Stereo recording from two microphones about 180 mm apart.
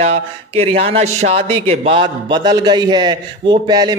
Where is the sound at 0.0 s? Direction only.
35° right (ahead or behind).